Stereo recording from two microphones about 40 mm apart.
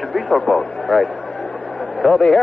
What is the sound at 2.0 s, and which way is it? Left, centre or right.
Speech, left.